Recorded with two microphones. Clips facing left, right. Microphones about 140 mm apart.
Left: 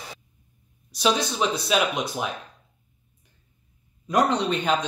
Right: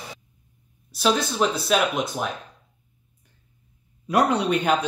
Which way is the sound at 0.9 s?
Centre (ahead or behind).